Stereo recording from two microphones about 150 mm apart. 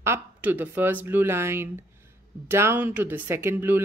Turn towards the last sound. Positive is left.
turn(degrees=-15)  # may be behind; listen again after turning